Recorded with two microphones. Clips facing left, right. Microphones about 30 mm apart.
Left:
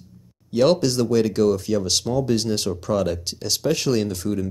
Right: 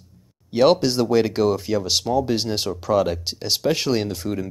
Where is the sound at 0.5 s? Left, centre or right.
Centre.